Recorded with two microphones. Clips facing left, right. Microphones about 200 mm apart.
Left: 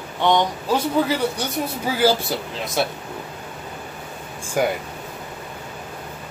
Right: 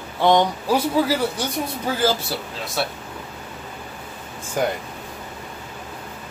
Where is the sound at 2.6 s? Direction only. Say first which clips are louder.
Left 3 dB; 20° left (ahead or behind).